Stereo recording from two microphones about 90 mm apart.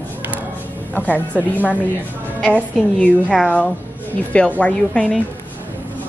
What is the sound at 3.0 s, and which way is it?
A woman's voice, 10° left (ahead or behind).